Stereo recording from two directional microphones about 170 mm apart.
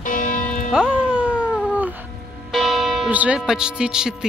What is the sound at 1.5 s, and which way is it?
Cat, 10° right (ahead or behind).